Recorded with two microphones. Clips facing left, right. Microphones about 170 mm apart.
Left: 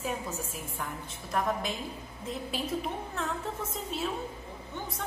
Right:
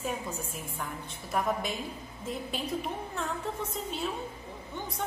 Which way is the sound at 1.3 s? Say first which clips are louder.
Even; centre (ahead or behind).